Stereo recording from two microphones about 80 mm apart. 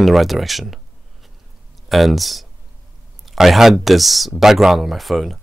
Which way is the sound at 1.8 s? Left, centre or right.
Centre.